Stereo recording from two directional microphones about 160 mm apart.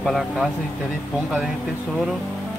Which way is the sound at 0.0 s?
Centre (ahead or behind).